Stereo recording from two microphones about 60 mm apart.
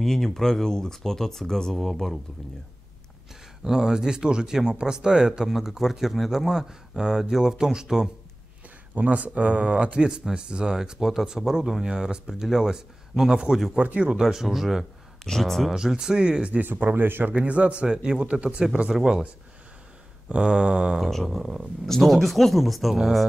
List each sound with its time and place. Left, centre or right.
0.0 s speech: centre
3.6 s speech: centre
8.9 s speech: right; by 13.6 s centre
13.7 s speech: right
14.2 s speech: centre
15.2 s speech: centre
15.7 s speech: centre
16.6 s speech: right
17.3 s speech: right
20.2 s speech: centre
21.0 s speech: centre